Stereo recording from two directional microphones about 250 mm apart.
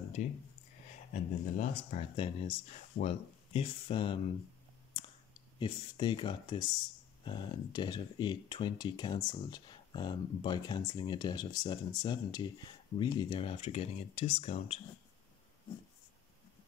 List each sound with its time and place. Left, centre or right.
0.2 s speech: left
5.6 s speech: centre